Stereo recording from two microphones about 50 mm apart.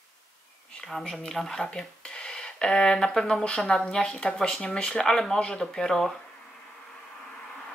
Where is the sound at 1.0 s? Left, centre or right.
Centre.